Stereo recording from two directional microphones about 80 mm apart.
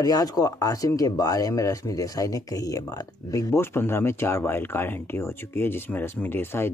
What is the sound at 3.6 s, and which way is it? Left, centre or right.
Speech, left.